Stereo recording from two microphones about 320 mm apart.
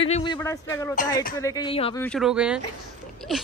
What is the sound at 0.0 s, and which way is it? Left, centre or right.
A man's voice, centre.